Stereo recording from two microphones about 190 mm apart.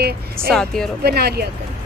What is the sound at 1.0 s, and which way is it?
Speech, 55° right (ahead or behind).